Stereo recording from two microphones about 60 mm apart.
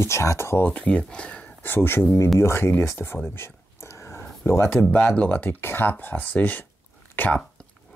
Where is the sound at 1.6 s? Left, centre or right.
Left.